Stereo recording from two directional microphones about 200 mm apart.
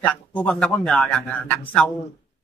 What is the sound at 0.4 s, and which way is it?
Speech, 5° left (ahead or behind).